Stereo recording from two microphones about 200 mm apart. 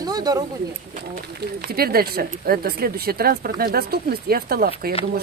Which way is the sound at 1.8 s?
50° right (ahead or behind).